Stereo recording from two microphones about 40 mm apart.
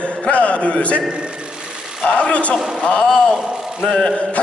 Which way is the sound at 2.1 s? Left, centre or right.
Left.